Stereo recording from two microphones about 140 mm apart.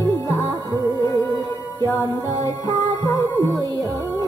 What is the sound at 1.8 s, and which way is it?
Music, 20° left (ahead or behind).